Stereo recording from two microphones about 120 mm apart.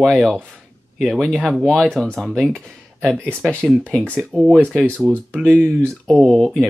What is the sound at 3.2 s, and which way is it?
Speech, 10° right (ahead or behind).